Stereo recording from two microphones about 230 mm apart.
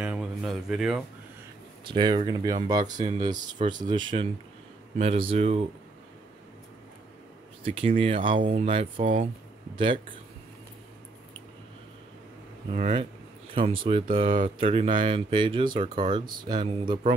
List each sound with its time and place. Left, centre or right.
0.0 s speech: centre
1.9 s speech: right
7.6 s speech: right
12.7 s speech: right